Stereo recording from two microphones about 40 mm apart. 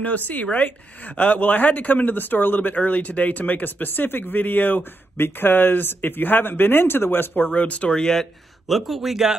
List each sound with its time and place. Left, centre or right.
0.0 s speech: left
5.1 s speech: left
7.5 s speech: left
7.9 s speech: centre
8.6 s speech: centre